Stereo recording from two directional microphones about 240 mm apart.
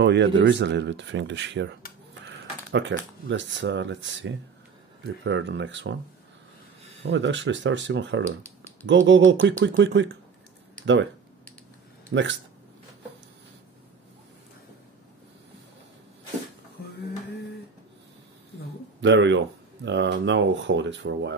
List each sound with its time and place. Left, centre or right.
0.0 s speech: right
2.7 s speech: right
7.1 s speech: right
12.1 s speech: right
18.9 s speech: right